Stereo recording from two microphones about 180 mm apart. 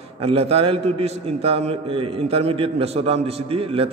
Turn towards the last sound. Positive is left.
turn(degrees=-30)  # may be behind; listen again after turning